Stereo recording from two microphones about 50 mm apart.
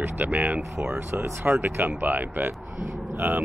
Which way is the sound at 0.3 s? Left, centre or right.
Right.